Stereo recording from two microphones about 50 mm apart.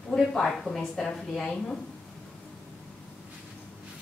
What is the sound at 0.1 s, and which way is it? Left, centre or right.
A woman's voice, centre.